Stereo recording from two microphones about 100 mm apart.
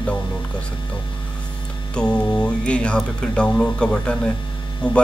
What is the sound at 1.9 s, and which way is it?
Speech, 10° left (ahead or behind).